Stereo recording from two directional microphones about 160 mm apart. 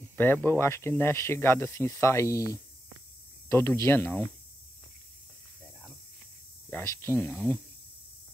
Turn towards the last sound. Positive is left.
turn(degrees=10)  # may be behind; listen again after turning